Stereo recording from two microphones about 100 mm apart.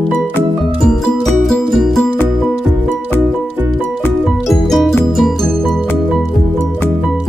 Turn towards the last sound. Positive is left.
turn(degrees=5)  # may be behind; listen again after turning